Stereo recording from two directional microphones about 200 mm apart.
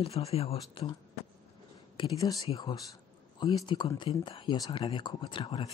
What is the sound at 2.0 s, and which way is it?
Speech, 15° left (ahead or behind).